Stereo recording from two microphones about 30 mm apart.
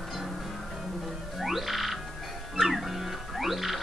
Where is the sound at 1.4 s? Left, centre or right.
Centre.